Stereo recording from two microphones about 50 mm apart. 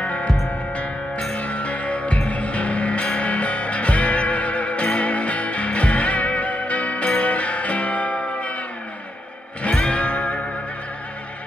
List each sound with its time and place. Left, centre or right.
0.0 s music: left
1.3 s music: left
9.6 s music: left